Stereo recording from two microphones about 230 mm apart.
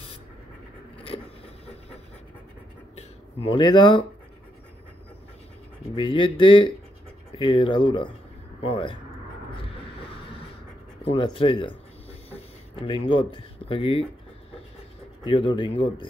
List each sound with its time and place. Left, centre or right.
3.0 s speech: left
5.9 s speech: left
11.1 s a sound: left
12.8 s speech: left
15.2 s speech: left